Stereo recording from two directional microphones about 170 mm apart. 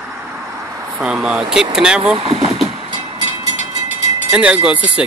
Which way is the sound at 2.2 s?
35° right (ahead or behind).